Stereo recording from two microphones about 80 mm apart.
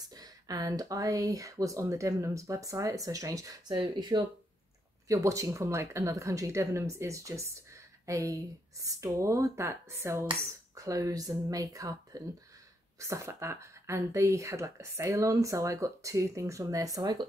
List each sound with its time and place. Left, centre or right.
0.1 s speech: right
3.7 s speech: right
5.0 s speech: right